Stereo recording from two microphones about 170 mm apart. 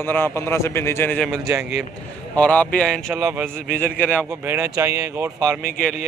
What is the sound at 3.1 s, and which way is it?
Speech, 15° right (ahead or behind).